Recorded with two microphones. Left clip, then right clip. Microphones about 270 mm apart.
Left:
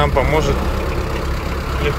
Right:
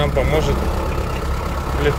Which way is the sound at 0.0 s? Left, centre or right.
Centre.